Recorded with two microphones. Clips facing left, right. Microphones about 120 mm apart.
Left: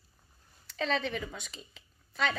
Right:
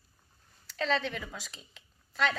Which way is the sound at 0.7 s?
Centre (ahead or behind).